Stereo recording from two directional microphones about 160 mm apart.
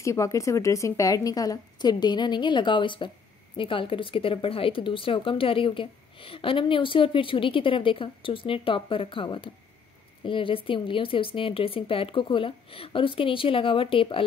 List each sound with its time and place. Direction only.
0.0 s a woman's voice: 20° left (ahead or behind); by 14.2 s 35° left (ahead or behind)